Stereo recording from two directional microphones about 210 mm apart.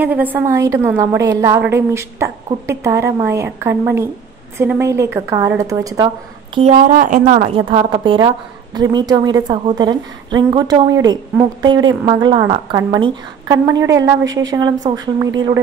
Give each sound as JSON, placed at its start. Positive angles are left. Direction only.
{"t": 0.0, "sound": "a woman's voice", "side_deg": -10}
{"t": 6.5, "sound": "a woman's voice", "side_deg": -35}